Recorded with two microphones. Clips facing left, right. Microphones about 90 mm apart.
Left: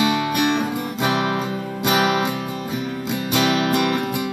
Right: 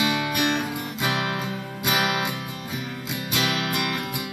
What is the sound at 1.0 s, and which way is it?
Music, 30° left (ahead or behind).